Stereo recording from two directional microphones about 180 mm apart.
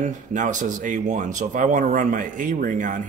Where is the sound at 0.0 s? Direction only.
45° right (ahead or behind).